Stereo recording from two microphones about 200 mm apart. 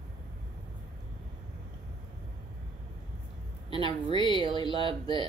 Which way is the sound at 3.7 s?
25° right (ahead or behind).